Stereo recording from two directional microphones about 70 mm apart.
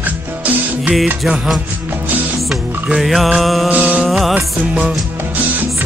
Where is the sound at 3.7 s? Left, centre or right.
Right.